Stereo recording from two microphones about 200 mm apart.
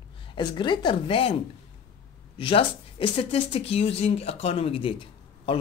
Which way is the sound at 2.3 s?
25° left (ahead or behind).